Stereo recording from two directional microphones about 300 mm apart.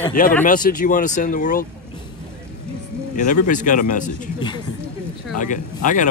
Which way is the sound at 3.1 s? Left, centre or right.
Left.